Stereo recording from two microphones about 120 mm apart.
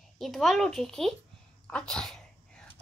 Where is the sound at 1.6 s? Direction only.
5° left (ahead or behind).